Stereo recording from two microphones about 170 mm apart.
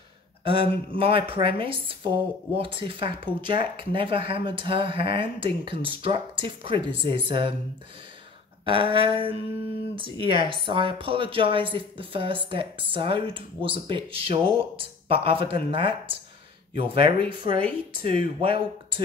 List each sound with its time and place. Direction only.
0.4 s speech: 30° right (ahead or behind)
8.6 s speech: 30° right (ahead or behind)